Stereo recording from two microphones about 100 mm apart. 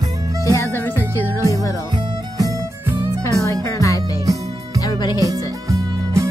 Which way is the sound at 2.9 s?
30° right (ahead or behind).